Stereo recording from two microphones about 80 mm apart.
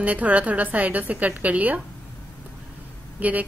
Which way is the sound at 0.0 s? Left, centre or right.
Centre.